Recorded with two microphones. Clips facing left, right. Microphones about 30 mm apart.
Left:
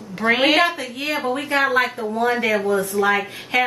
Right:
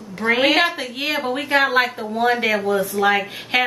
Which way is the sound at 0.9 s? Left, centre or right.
Centre.